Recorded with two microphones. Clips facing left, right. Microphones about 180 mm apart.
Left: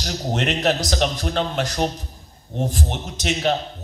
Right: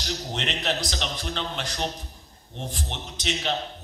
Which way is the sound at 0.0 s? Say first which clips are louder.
Left 7 dB; 45° left (ahead or behind).